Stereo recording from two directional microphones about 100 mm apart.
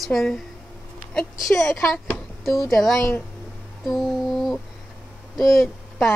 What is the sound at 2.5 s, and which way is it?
Music, centre (ahead or behind).